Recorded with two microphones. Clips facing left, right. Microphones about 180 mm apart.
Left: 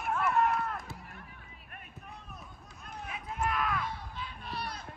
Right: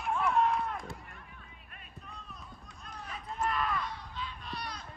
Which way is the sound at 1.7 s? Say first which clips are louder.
Left 2 dB; 60° left (ahead or behind).